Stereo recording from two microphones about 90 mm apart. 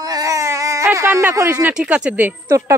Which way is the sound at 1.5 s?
20° right (ahead or behind).